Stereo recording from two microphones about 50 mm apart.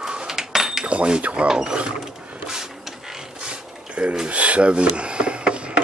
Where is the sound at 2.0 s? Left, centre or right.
Centre.